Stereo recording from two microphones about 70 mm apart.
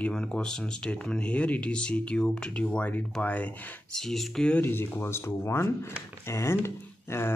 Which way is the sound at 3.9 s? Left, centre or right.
Centre.